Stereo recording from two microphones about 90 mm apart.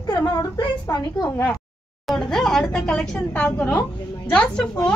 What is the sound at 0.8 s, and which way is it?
Speech, 25° left (ahead or behind).